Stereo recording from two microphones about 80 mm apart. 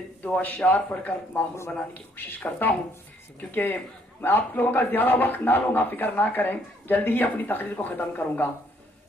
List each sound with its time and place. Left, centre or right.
0.2 s a man's voice: left